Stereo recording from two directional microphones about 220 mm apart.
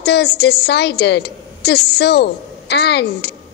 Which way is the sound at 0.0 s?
50° left (ahead or behind).